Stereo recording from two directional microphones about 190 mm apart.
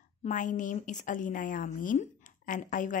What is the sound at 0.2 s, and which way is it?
A woman's voice, 40° left (ahead or behind).